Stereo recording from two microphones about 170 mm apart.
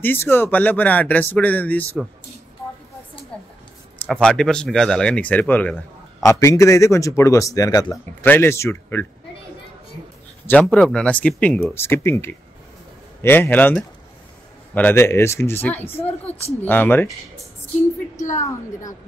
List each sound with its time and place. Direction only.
0.0 s speech: 10° left (ahead or behind)
4.0 s speech: 5° left (ahead or behind)
10.4 s speech: 10° left (ahead or behind)
15.8 s speech: 35° left (ahead or behind)
16.6 s speech: 10° left (ahead or behind)